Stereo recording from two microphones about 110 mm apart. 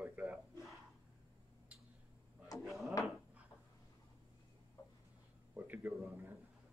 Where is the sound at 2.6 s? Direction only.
Centre (ahead or behind).